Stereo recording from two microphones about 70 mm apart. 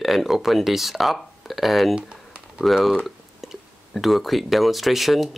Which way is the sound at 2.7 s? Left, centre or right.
Centre.